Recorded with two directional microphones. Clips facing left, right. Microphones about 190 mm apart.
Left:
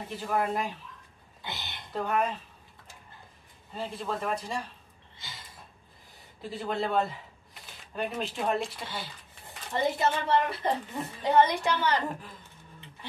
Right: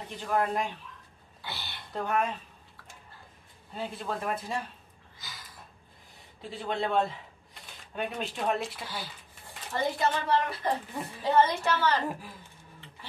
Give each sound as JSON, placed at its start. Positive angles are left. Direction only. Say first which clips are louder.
{"t": 0.0, "sound": "a man's voice", "louder": "even", "side_deg": 5}
{"t": 1.4, "sound": "a sound", "louder": "left 1 dB", "side_deg": 20}
{"t": 1.9, "sound": "a man's voice", "louder": "left 1 dB", "side_deg": 0}
{"t": 3.7, "sound": "a man's voice", "louder": "left 1 dB", "side_deg": 0}
{"t": 5.2, "sound": "a sound", "louder": "even", "side_deg": 25}
{"t": 6.5, "sound": "a man's voice", "louder": "even", "side_deg": 0}
{"t": 9.8, "sound": "a woman's voice", "louder": "left 1 dB", "side_deg": 20}